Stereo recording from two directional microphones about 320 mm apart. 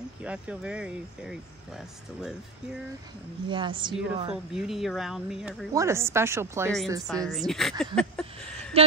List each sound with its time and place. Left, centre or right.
0.2 s speech: centre
3.4 s a woman's voice: centre
4.3 s a woman's voice: centre
7.8 s a sound: centre
8.7 s speech: centre